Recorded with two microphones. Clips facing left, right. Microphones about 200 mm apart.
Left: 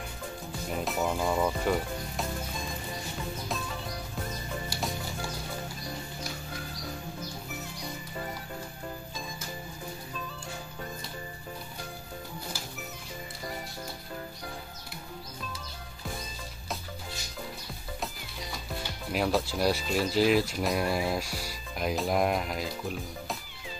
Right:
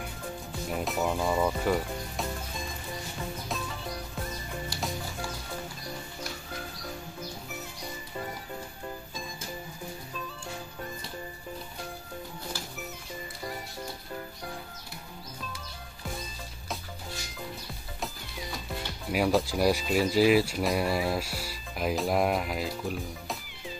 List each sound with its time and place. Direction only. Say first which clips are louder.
0.8 s speech: even; centre (ahead or behind)
19.1 s speech: right 2 dB; 10° right (ahead or behind)